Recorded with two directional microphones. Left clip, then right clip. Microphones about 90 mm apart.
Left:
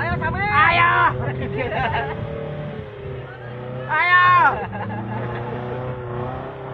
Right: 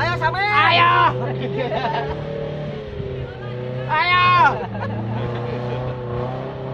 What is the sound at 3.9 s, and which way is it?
Music, 20° left (ahead or behind).